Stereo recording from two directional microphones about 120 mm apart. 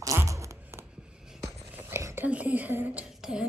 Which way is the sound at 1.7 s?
20° right (ahead or behind).